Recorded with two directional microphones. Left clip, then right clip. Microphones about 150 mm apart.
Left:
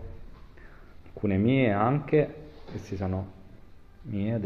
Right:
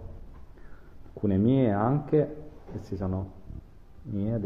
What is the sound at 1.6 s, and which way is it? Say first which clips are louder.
Speech: left 2 dB; 20° right (ahead or behind).